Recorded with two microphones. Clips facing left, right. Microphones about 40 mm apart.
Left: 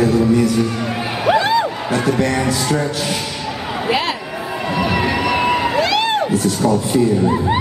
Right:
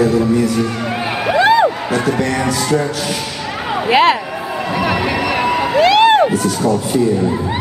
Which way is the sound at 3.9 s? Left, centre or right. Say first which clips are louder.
Right 8 dB; right.